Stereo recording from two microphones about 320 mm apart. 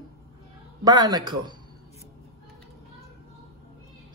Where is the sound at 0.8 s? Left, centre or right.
Centre.